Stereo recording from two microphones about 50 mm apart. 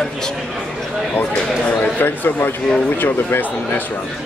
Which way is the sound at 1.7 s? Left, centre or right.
Left.